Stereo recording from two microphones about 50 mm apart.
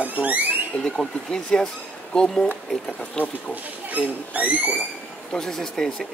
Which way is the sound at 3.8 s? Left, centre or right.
Right.